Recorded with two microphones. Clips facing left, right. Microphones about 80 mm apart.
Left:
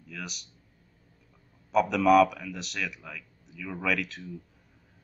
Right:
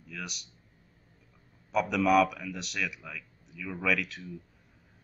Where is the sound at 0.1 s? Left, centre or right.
Centre.